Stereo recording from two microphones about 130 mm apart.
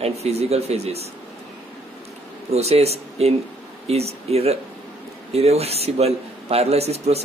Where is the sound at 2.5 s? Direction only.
55° right (ahead or behind).